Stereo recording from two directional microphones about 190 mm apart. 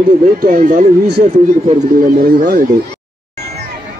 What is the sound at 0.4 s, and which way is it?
Speech, 45° right (ahead or behind).